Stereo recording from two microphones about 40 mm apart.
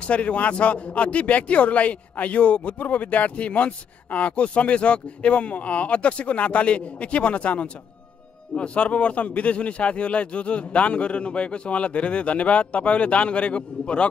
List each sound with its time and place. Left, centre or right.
0.0 s speech: left